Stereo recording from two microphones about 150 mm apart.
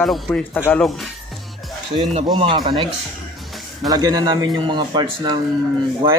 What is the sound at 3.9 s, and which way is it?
A man's voice, 25° right (ahead or behind).